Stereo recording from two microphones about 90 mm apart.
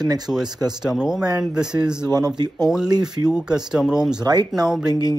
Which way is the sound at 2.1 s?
50° right (ahead or behind).